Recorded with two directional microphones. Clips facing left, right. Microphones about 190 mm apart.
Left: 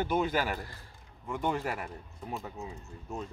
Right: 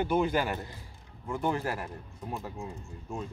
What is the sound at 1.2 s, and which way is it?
Speech, 5° right (ahead or behind).